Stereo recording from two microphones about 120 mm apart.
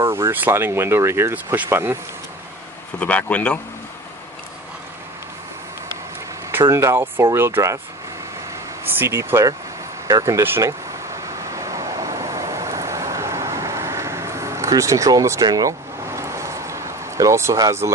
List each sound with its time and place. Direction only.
0.0 s speech: 20° right (ahead or behind)
3.0 s speech: 10° left (ahead or behind)
6.7 s speech: 25° right (ahead or behind)
8.8 s speech: 20° right (ahead or behind)
11.5 s vehicle: 25° right (ahead or behind)